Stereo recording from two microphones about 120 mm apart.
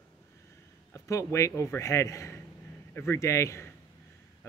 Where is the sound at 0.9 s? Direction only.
25° left (ahead or behind).